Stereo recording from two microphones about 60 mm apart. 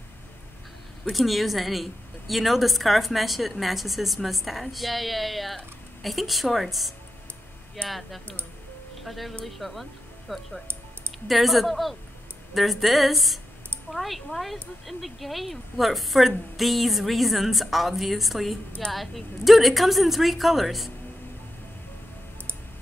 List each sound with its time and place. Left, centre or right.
1.1 s speech: centre